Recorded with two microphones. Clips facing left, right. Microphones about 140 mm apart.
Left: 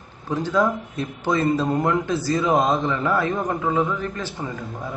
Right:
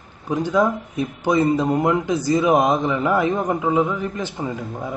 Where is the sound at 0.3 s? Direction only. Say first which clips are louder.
Right 2 dB; 15° right (ahead or behind).